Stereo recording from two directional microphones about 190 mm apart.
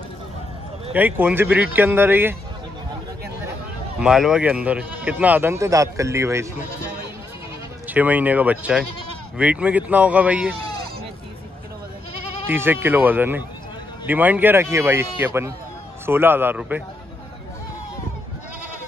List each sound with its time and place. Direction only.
0.9 s speech: 10° right (ahead or behind)
4.0 s speech: 5° right (ahead or behind)
7.9 s speech: 10° right (ahead or behind)
12.4 s speech: 10° right (ahead or behind)